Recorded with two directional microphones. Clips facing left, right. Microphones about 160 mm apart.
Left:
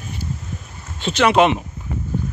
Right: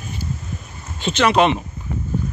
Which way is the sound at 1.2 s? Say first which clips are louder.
Left 1 dB; 15° left (ahead or behind).